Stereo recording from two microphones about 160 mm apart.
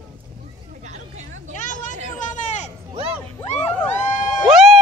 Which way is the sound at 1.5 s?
50° left (ahead or behind).